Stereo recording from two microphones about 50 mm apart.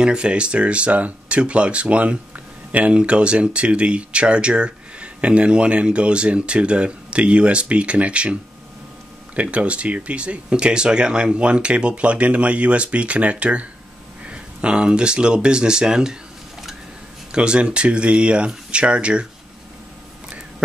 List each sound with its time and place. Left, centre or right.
0.0 s speech: centre
17.3 s speech: centre